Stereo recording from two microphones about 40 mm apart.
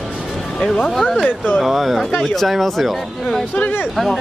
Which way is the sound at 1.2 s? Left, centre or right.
Left.